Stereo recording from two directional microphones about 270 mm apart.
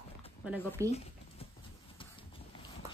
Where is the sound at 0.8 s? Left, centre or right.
Centre.